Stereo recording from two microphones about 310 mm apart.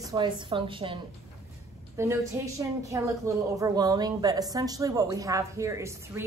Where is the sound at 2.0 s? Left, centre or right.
Centre.